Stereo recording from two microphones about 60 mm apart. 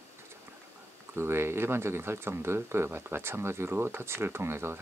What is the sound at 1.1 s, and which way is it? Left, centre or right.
Speech, right.